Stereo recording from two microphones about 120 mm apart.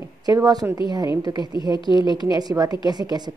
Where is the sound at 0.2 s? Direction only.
30° right (ahead or behind).